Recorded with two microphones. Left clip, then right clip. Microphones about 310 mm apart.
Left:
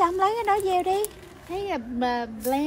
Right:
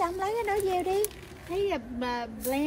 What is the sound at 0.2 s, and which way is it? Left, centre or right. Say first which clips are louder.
Speech: left 6 dB; centre.